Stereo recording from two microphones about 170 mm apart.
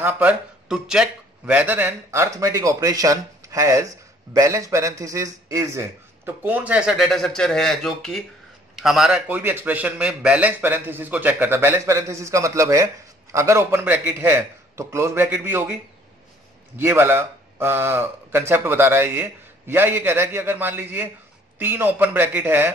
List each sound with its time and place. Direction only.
0.0 s a man's voice: 10° right (ahead or behind)